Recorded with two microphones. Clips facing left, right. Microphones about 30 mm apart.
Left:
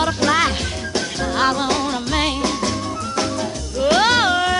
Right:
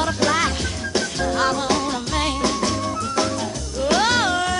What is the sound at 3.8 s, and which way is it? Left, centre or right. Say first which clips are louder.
Music: left 3 dB; left.